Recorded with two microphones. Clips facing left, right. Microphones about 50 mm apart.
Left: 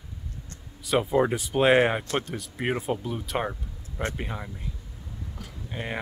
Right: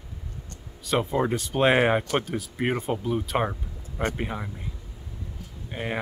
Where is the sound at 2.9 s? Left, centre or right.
Centre.